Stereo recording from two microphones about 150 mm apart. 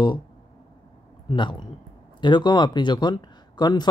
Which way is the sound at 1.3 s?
30° left (ahead or behind).